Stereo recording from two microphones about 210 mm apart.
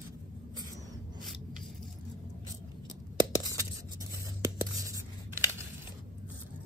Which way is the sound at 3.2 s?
15° right (ahead or behind).